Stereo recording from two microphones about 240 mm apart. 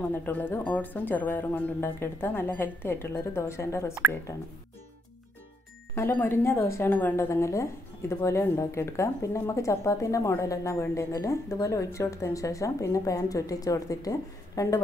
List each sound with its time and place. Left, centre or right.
0.1 s speech: centre
5.9 s speech: centre